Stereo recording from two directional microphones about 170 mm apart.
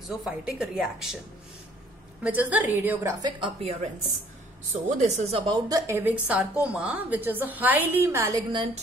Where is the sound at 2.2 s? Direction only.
10° right (ahead or behind).